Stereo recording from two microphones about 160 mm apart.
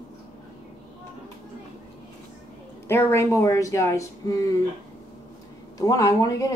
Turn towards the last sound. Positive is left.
turn(degrees=20)  # may be behind; listen again after turning